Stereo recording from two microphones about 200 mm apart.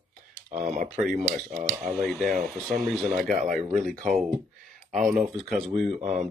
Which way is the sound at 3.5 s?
Centre (ahead or behind).